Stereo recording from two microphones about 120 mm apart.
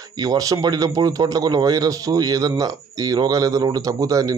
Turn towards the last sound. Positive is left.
turn(degrees=-30)  # may be behind; listen again after turning